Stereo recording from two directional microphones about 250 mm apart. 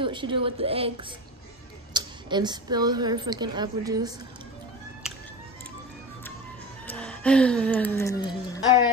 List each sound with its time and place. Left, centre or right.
0.0 s a woman's voice: centre
6.9 s a woman's voice: centre